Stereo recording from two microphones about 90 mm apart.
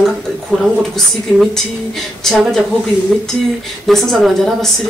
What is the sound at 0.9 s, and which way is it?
Speech, 5° left (ahead or behind).